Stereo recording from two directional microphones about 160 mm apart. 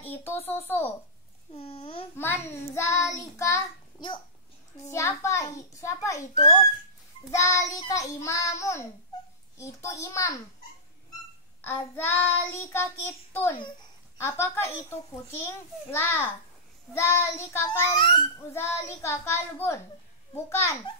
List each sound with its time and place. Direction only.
0.0 s a sound: 15° left (ahead or behind)
0.5 s child singing: 15° left (ahead or behind)
1.5 s babbling: 35° left (ahead or behind)
2.1 s child singing: 15° left (ahead or behind)
4.9 s a child's voice: 20° left (ahead or behind)
7.2 s a child's voice: 20° left (ahead or behind)
11.6 s child singing: 10° left (ahead or behind)
13.6 s a child's voice: 30° left (ahead or behind)
14.1 s child singing: 15° left (ahead or behind)
17.6 s a child's voice: 30° left (ahead or behind)
18.5 s child singing: 15° left (ahead or behind)